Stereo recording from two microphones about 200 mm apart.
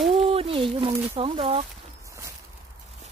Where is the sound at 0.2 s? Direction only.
30° right (ahead or behind).